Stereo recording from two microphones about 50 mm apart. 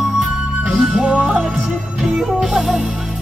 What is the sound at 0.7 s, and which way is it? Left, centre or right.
Music, centre.